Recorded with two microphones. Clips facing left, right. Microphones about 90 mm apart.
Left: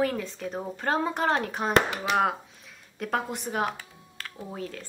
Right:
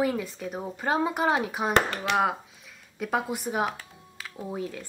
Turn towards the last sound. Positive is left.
turn(degrees=-15)  # may be behind; listen again after turning